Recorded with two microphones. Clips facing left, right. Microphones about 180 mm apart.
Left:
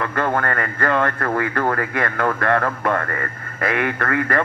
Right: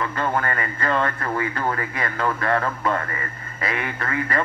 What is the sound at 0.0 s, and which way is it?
A man's voice, 60° left (ahead or behind).